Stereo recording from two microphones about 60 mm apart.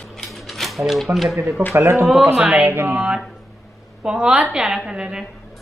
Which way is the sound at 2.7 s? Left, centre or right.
Right.